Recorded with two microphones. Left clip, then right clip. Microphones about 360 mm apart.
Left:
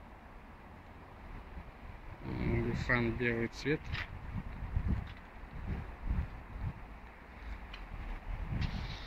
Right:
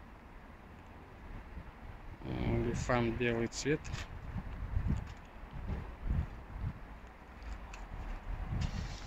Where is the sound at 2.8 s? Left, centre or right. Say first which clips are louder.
Left 1 dB; centre.